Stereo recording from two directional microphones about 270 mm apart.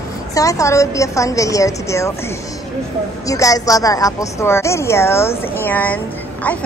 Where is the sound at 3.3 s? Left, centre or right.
Centre.